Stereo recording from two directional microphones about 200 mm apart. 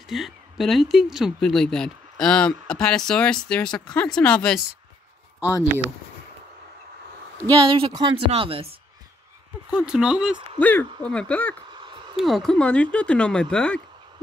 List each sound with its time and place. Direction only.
0.1 s speech: centre (ahead or behind)
7.4 s a woman's voice: 25° right (ahead or behind)
9.7 s speech: 5° right (ahead or behind)
10.6 s speech: 10° left (ahead or behind)
11.7 s a sound: 25° right (ahead or behind)
12.2 s speech: centre (ahead or behind)